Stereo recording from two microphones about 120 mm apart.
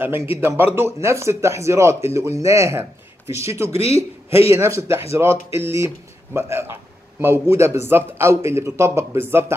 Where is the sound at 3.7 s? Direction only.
55° left (ahead or behind).